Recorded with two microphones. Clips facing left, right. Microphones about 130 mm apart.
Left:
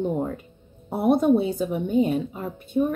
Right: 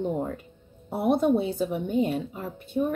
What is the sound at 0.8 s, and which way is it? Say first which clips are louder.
Speech: left 3 dB; 50° left (ahead or behind).